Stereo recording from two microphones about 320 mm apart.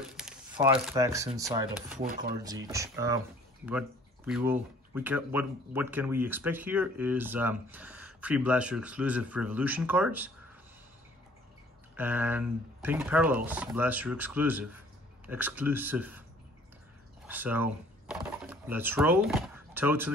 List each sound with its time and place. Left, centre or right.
0.2 s speech: centre
2.0 s speech: right
2.4 s speech: centre
4.3 s speech: centre
12.0 s speech: centre
17.3 s typing: centre